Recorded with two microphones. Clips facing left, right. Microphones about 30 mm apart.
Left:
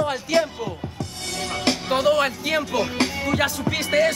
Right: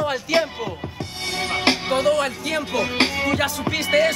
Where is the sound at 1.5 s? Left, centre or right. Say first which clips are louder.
Right 3 dB; right.